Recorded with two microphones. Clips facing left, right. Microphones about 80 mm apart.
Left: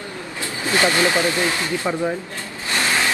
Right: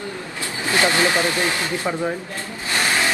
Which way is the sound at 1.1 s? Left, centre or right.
Left.